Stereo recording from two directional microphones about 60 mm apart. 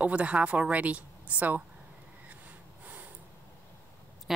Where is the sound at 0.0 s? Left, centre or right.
Right.